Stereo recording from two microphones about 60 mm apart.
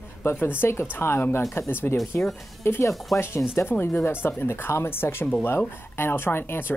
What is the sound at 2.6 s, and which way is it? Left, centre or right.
Speech, left.